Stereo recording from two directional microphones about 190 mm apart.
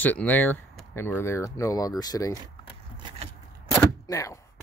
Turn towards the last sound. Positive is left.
turn(degrees=15)  # may be behind; listen again after turning